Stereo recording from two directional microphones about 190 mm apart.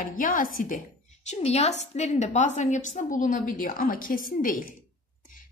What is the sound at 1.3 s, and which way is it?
A woman's voice, 35° left (ahead or behind).